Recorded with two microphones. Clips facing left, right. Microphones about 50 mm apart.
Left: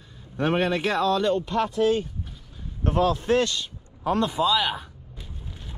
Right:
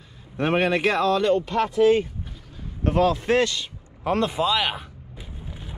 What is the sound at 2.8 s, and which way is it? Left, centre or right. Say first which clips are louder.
Speech: right 2 dB; right.